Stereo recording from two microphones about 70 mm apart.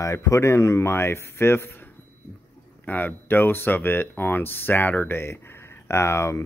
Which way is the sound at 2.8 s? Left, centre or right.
Left.